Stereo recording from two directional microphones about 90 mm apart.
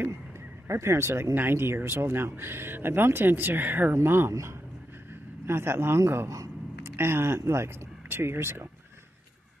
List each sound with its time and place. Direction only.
0.7 s speech: 30° right (ahead or behind)